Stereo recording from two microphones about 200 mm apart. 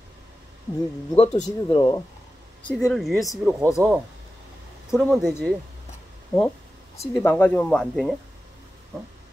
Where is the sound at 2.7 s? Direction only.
Centre (ahead or behind).